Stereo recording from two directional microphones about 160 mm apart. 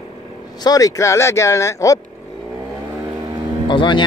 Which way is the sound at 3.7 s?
30° left (ahead or behind).